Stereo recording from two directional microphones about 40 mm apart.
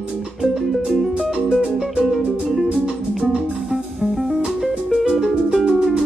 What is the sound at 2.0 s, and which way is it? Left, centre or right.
Music, centre.